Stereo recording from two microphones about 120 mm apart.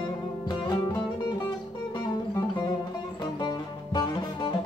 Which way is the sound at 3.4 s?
35° left (ahead or behind).